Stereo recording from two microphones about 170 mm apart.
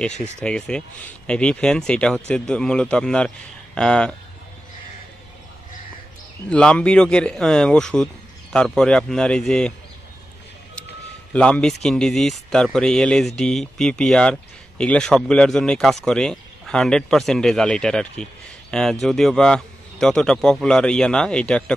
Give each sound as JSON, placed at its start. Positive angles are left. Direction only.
{"t": 0.2, "sound": "speech", "side_deg": 5}
{"t": 6.5, "sound": "speech", "side_deg": 5}
{"t": 11.3, "sound": "speech", "side_deg": 5}